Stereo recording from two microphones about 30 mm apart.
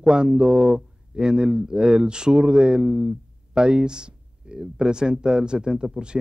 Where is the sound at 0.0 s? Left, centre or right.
Right.